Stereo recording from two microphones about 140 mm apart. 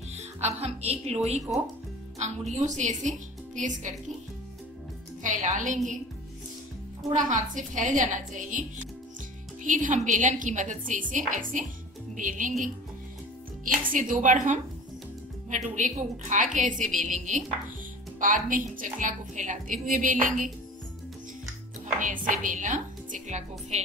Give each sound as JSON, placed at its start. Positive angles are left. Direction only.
{"t": 0.1, "sound": "a woman's voice", "side_deg": -50}
{"t": 2.5, "sound": "a woman's voice", "side_deg": -60}
{"t": 5.2, "sound": "a woman's voice", "side_deg": -60}
{"t": 7.2, "sound": "a woman's voice", "side_deg": -65}
{"t": 13.9, "sound": "a woman's voice", "side_deg": -70}
{"t": 18.2, "sound": "a woman's voice", "side_deg": -70}
{"t": 22.0, "sound": "a woman's voice", "side_deg": -70}